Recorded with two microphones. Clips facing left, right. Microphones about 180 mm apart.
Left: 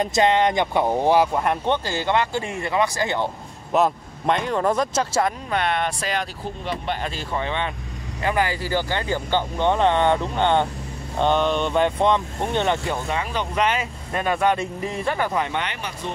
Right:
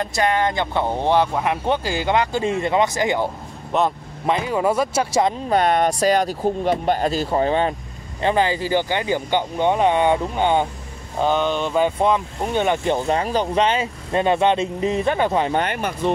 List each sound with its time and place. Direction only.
0.0 s speech: 20° left (ahead or behind); by 3.3 s 15° right (ahead or behind)
3.7 s speech: centre (ahead or behind)
5.5 s speech: 40° right (ahead or behind)
8.2 s speech: 25° right (ahead or behind); by 12.7 s 10° right (ahead or behind)
12.8 s speech: 30° right (ahead or behind)
15.6 s speech: 50° right (ahead or behind)